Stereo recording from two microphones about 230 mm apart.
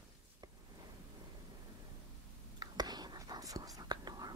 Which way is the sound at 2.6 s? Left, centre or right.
Centre.